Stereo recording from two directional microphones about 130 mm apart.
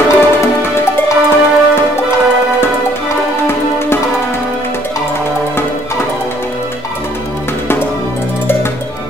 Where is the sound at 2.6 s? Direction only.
20° left (ahead or behind).